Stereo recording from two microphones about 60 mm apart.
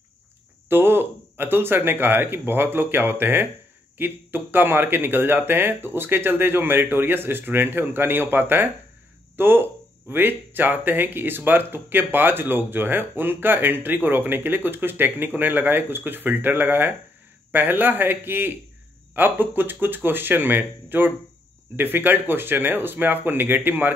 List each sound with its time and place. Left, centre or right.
0.7 s speech: right